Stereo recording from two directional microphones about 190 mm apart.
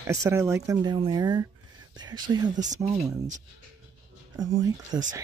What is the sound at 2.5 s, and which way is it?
Speech, 40° right (ahead or behind).